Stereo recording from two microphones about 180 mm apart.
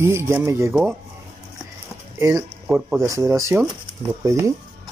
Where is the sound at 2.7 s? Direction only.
5° right (ahead or behind).